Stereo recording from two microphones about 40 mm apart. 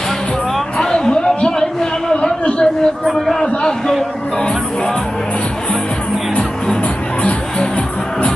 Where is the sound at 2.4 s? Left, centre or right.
Left.